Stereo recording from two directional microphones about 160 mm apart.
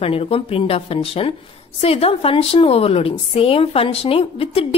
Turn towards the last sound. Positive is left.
turn(degrees=35)  # may be behind; listen again after turning